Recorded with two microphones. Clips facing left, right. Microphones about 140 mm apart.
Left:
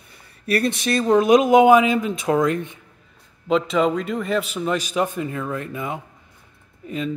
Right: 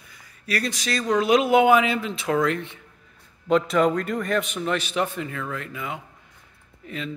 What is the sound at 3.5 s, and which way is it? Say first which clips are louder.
Speech: left 1 dB; centre (ahead or behind).